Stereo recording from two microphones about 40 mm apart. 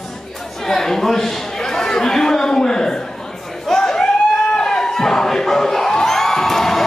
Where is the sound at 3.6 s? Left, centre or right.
Centre.